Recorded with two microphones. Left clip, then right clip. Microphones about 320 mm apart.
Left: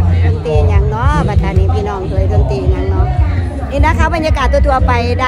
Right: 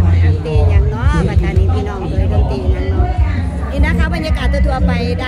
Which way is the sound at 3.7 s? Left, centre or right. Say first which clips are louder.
Left 7 dB; centre.